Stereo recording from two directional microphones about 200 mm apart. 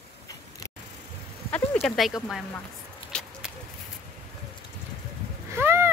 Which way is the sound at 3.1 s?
5° left (ahead or behind).